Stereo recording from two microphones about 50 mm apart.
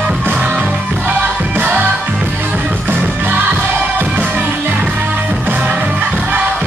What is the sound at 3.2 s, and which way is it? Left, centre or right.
Music, right.